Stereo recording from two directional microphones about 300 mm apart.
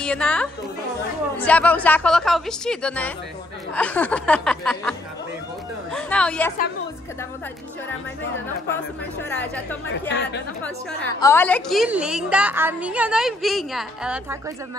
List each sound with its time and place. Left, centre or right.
0.0 s a woman's voice: centre
5.9 s a woman's voice: centre
9.3 s a woman's voice: centre
10.0 s speech: left
10.6 s a woman's voice: centre